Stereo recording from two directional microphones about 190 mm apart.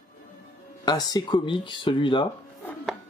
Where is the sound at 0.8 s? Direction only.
20° left (ahead or behind).